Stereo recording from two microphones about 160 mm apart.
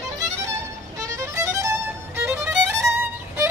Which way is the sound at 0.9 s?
20° right (ahead or behind).